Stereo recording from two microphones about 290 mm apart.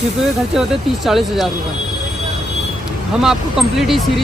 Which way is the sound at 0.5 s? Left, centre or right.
Centre.